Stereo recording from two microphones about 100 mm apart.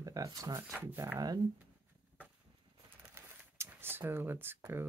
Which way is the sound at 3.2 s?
25° right (ahead or behind).